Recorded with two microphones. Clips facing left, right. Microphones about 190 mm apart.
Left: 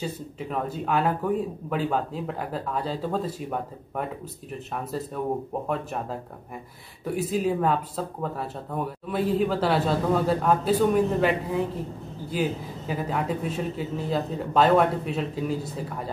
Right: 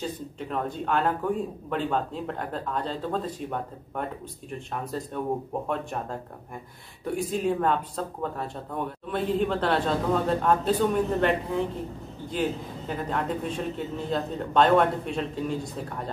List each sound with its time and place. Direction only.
0.0 s speech: 5° left (ahead or behind)
7.2 s speech: 5° left (ahead or behind)